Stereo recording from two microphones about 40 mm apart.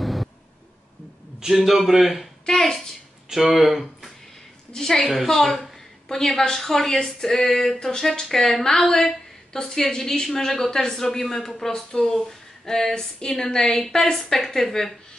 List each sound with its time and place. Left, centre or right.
0.0 s a sound: centre
1.4 s a man's voice: centre
2.4 s speech: centre
3.3 s speech: centre
4.7 s speech: centre
5.1 s a man's voice: centre